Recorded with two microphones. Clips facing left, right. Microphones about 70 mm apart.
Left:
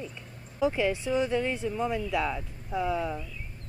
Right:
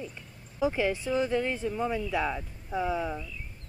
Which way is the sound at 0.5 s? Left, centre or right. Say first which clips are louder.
Left 1 dB; centre.